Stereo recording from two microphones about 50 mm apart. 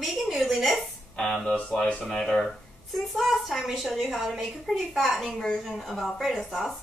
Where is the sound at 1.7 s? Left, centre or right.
Centre.